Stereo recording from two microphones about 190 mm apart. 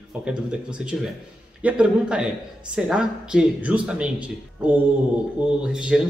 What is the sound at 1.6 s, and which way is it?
Speech, 5° right (ahead or behind).